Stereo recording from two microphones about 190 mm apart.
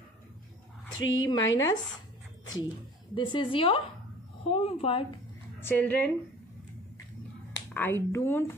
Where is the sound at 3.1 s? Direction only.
25° left (ahead or behind).